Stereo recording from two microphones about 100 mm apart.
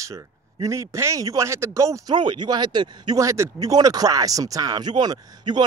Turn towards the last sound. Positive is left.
turn(degrees=-45)  # may be behind; listen again after turning